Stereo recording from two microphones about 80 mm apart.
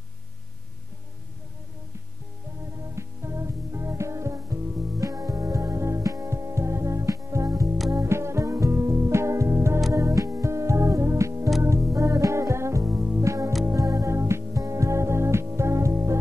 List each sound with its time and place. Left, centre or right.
2.8 s music: right